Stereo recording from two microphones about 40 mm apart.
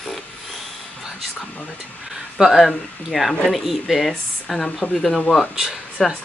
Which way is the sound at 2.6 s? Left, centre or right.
Centre.